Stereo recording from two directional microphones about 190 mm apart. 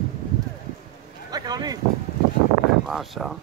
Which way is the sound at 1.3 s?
20° right (ahead or behind).